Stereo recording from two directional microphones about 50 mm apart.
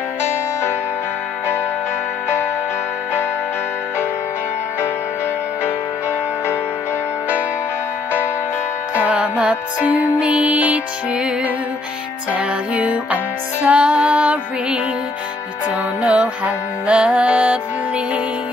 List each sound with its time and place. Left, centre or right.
0.2 s music: left
5.6 s music: left
8.9 s music: right